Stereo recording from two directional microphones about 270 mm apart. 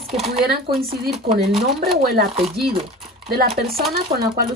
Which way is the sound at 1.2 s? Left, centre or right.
Right.